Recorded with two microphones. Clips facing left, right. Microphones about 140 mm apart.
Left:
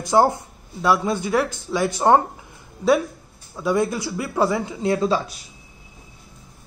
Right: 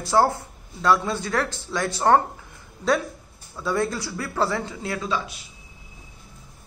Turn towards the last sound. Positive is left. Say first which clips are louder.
# left 6 dB
turn(degrees=35)  # may be behind; listen again after turning